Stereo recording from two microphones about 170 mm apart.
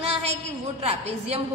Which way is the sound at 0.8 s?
35° right (ahead or behind).